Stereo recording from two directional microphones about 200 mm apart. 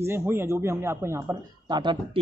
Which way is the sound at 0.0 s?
10° right (ahead or behind).